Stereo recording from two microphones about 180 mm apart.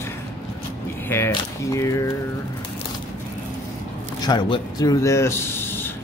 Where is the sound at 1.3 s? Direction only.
15° left (ahead or behind).